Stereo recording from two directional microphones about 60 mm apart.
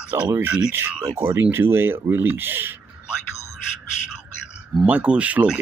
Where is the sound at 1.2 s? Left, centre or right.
Right.